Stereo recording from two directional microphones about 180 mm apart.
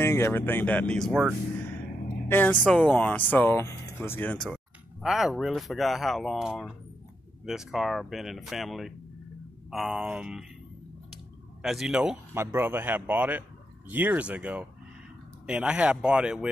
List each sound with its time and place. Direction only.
0.0 s speech: 15° left (ahead or behind)
5.0 s speech: centre (ahead or behind)
11.6 s a man's voice: centre (ahead or behind)